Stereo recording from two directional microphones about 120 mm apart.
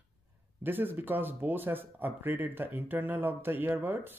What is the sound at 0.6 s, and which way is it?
Speech, 15° right (ahead or behind).